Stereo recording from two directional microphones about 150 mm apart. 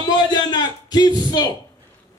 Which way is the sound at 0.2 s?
30° left (ahead or behind).